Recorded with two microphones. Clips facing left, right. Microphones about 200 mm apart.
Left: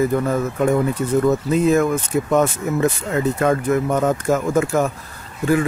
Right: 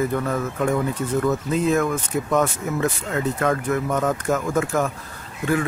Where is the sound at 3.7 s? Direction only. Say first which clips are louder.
Left 4 dB; 25° left (ahead or behind).